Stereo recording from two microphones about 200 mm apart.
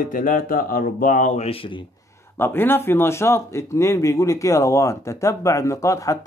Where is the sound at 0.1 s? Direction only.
45° left (ahead or behind); by 1.8 s 30° left (ahead or behind).